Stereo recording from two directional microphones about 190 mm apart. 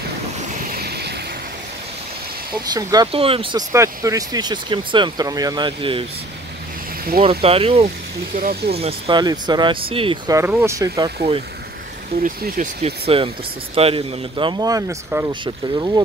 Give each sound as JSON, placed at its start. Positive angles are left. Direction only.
{"t": 0.7, "sound": "waves", "side_deg": -55}
{"t": 2.7, "sound": "speech", "side_deg": -20}
{"t": 3.7, "sound": "speech", "side_deg": -15}
{"t": 7.2, "sound": "speech", "side_deg": -30}
{"t": 8.4, "sound": "speech", "side_deg": -45}
{"t": 8.7, "sound": "speech", "side_deg": -30}
{"t": 10.3, "sound": "speech", "side_deg": -10}
{"t": 11.1, "sound": "speech", "side_deg": -30}